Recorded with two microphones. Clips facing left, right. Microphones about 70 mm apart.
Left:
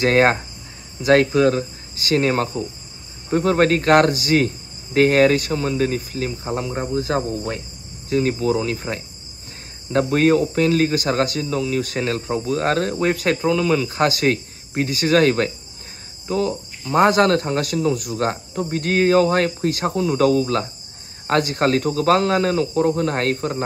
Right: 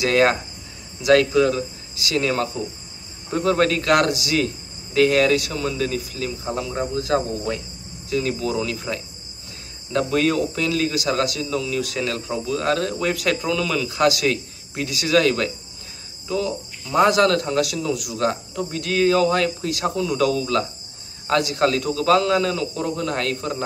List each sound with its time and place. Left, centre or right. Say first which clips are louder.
0.0 s speech: left 2 dB; left
16.3 s cricket: left 3 dB; left
16.9 s speech: left 1 dB; left